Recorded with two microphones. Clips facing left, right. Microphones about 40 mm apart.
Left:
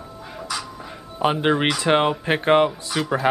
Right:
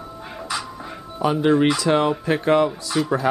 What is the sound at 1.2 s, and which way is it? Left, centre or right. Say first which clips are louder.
Speech: right 2 dB; left.